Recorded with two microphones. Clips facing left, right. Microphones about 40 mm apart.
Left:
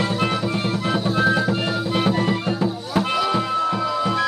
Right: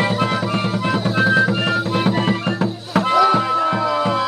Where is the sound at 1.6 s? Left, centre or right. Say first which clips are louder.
Right 3 dB; right.